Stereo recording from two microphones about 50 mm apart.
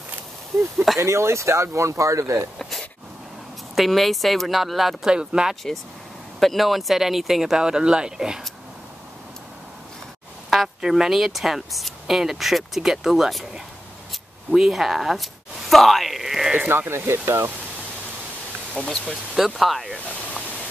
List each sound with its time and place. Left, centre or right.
0.9 s speech: right
3.7 s speech: centre
5.1 s speech: centre
6.4 s speech: centre
10.5 s speech: centre
14.5 s speech: centre
16.7 s speech: right
18.8 s speech: centre
19.3 s speech: centre